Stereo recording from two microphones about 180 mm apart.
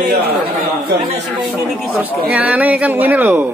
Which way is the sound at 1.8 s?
10° right (ahead or behind).